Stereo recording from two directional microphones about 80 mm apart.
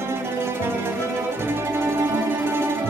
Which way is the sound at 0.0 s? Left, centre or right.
Right.